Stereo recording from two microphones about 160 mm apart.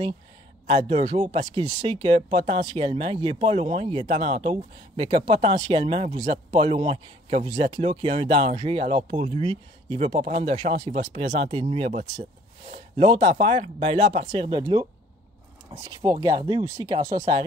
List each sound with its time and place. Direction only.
0.7 s speech: 35° right (ahead or behind)
14.2 s speech: 25° right (ahead or behind)
16.0 s speech: 25° right (ahead or behind)